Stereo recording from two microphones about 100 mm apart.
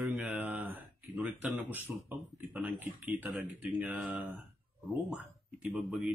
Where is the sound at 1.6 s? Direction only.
20° right (ahead or behind).